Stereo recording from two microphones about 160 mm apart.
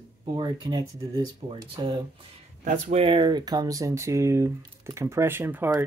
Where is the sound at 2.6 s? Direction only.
50° right (ahead or behind).